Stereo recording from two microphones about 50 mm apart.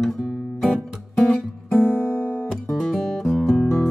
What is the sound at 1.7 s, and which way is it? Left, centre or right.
Guitar, right.